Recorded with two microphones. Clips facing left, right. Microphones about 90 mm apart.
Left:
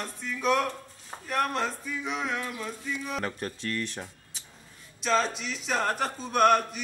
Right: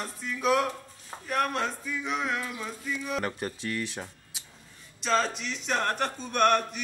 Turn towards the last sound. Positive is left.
turn(degrees=0)  # may be behind; listen again after turning